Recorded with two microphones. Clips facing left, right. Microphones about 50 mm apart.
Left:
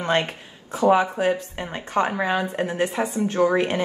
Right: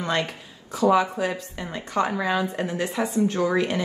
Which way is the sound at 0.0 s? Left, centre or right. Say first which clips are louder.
Left 3 dB; left.